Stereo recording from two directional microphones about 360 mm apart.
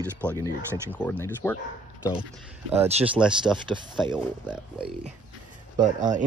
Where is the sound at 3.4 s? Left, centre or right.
Centre.